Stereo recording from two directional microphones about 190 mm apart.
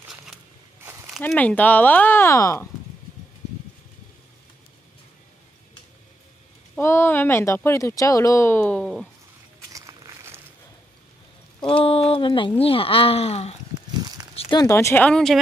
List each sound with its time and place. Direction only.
1.2 s speech: 10° left (ahead or behind)
6.7 s speech: 15° left (ahead or behind)
9.7 s a sound: 15° right (ahead or behind)
11.7 s speech: 30° left (ahead or behind)
14.3 s a sound: 30° left (ahead or behind)
14.6 s speech: 15° left (ahead or behind)